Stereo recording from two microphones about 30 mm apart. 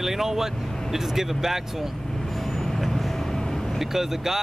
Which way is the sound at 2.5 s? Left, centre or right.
Centre.